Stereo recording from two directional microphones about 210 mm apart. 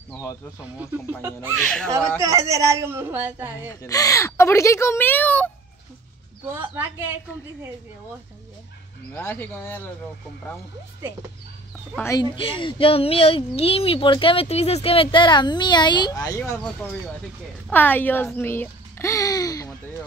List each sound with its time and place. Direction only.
0.1 s a child's voice: 15° left (ahead or behind)
0.7 s a woman's voice: 10° right (ahead or behind)
1.5 s speech: 5° left (ahead or behind)
1.9 s a woman's voice: 15° right (ahead or behind)
3.5 s a child's voice: 15° left (ahead or behind)
6.5 s a woman's voice: 10° right (ahead or behind)
9.1 s a child's voice: 10° left (ahead or behind)
12.0 s a child's voice: 15° left (ahead or behind)